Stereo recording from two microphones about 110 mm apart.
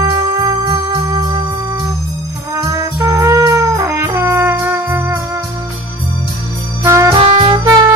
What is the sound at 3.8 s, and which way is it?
Brass instrument, 25° right (ahead or behind).